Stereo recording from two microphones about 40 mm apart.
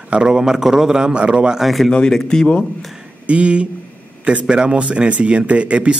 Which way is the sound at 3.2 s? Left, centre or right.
Right.